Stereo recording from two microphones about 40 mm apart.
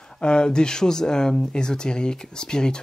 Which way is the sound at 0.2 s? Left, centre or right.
Left.